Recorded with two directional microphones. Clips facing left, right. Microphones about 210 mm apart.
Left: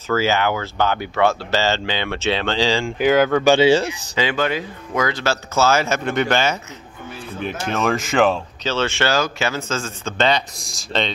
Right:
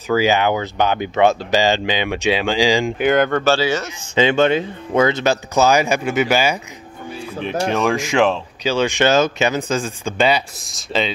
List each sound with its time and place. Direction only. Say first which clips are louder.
0.1 s speech: right 3 dB; 15° right (ahead or behind)
3.0 s speech: left 4 dB; centre (ahead or behind)
3.4 s speech: left 4 dB; 20° left (ahead or behind)
4.2 s speech: right 6 dB; 25° right (ahead or behind)
7.7 s speech: even; centre (ahead or behind)
8.6 s speech: right 4 dB; 15° right (ahead or behind)